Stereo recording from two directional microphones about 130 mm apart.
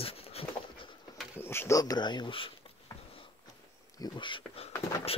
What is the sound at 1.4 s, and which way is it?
Speech, 20° left (ahead or behind).